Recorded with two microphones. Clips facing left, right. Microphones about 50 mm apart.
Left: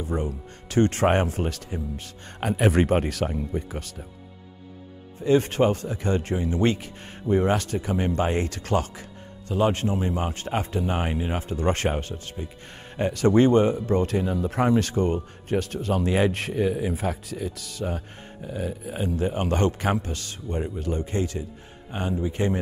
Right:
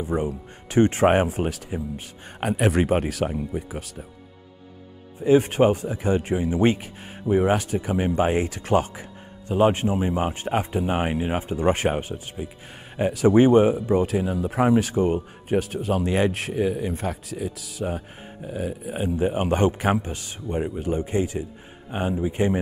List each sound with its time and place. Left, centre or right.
0.0 s speech: centre
5.2 s speech: centre